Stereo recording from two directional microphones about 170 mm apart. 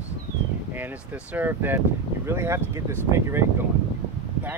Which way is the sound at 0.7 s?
10° right (ahead or behind).